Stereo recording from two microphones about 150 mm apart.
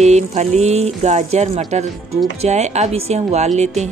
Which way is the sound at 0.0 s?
50° right (ahead or behind).